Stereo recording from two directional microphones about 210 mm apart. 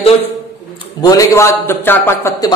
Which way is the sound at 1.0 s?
15° left (ahead or behind).